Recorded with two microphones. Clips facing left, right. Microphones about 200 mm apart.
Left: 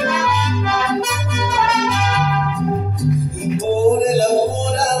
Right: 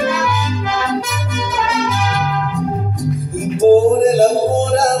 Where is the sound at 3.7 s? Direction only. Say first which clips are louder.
Right 4 dB; 50° right (ahead or behind).